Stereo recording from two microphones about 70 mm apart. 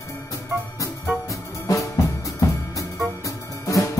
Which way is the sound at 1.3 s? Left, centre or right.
Left.